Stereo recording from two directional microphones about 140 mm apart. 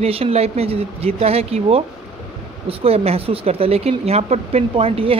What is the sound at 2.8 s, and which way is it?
Speech, 45° right (ahead or behind).